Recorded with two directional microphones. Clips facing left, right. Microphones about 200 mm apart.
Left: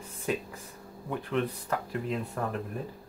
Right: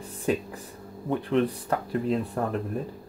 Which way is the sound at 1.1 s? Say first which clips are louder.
Right 6 dB; 35° right (ahead or behind).